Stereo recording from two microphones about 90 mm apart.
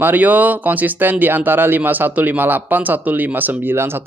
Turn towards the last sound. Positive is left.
turn(degrees=-25)  # may be behind; listen again after turning